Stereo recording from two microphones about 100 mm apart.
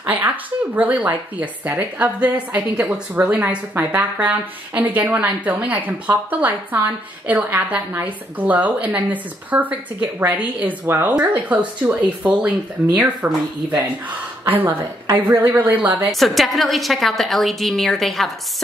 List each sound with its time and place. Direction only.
0.0 s a woman's voice: 15° right (ahead or behind)
16.1 s a woman's voice: centre (ahead or behind)